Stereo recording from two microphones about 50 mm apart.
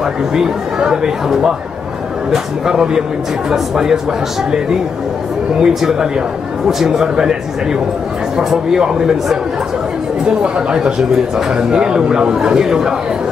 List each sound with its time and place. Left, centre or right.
0.0 s a man's voice: centre
5.6 s a man's voice: centre
8.4 s a man's voice: centre